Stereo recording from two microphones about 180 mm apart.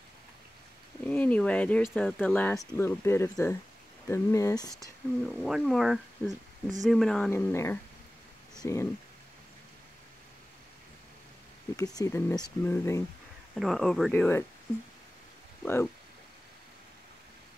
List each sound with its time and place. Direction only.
1.0 s speech: 10° left (ahead or behind)
5.3 s speech: centre (ahead or behind); by 8.8 s 15° left (ahead or behind)
11.7 s speech: 20° left (ahead or behind)
13.6 s speech: centre (ahead or behind)
15.6 s speech: 10° left (ahead or behind)